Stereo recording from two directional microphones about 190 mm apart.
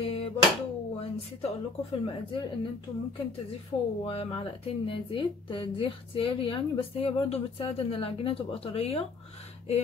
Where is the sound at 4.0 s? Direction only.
30° left (ahead or behind).